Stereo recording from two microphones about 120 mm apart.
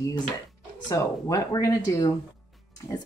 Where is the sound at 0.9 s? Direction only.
30° left (ahead or behind).